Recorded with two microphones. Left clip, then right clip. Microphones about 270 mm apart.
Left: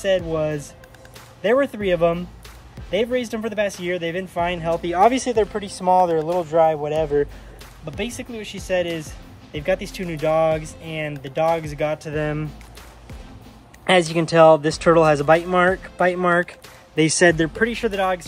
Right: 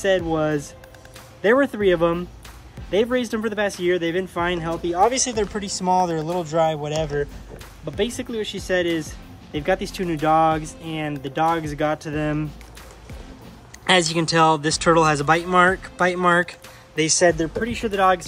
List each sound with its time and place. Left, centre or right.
0.0 s speech: centre
4.9 s speech: left; by 7.1 s centre
7.8 s speech: centre
13.8 s speech: centre
16.9 s speech: left
17.7 s speech: centre